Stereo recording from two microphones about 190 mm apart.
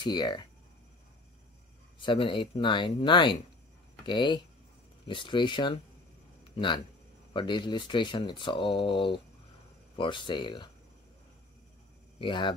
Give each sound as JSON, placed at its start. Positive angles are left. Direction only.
{"t": 0.0, "sound": "speech", "side_deg": 20}
{"t": 2.0, "sound": "speech", "side_deg": 25}
{"t": 12.2, "sound": "speech", "side_deg": 25}